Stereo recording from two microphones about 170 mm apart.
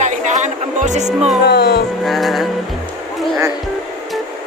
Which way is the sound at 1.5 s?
70° left (ahead or behind).